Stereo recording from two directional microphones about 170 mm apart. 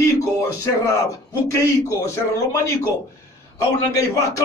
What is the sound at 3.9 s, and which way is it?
Speech, 20° left (ahead or behind).